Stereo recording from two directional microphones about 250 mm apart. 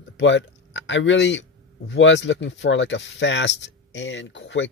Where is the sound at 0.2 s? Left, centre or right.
Left.